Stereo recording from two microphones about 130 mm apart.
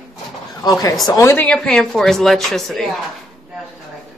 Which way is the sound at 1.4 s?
5° left (ahead or behind).